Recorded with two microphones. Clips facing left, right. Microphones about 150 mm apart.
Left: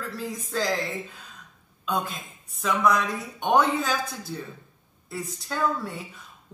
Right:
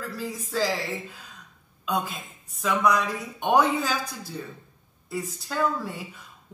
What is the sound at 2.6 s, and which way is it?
A man's voice, centre (ahead or behind).